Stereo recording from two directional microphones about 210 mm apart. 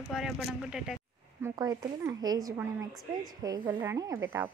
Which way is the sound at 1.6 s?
15° right (ahead or behind).